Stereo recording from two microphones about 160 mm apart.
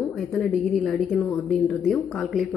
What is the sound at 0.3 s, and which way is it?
A woman's voice, centre (ahead or behind).